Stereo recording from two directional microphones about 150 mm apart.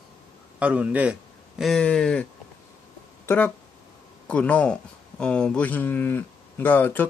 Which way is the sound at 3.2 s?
10° left (ahead or behind).